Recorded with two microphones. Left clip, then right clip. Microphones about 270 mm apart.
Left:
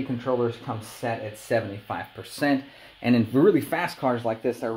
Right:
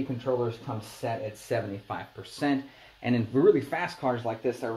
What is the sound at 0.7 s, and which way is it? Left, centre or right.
Speech, left.